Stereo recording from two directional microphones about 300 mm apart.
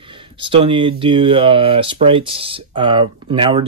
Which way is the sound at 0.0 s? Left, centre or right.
Centre.